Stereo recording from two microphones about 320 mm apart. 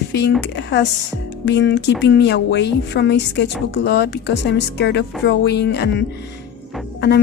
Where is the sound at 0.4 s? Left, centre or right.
Left.